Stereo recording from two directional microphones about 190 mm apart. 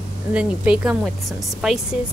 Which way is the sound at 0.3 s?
5° right (ahead or behind).